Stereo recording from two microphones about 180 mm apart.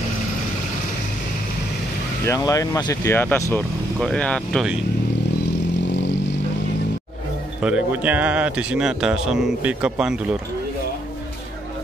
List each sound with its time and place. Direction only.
2.2 s speech: 20° left (ahead or behind); by 4.7 s centre (ahead or behind)
7.6 s speech: 5° right (ahead or behind)